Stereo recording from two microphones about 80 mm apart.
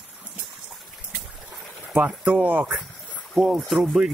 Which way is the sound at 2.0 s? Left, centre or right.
Right.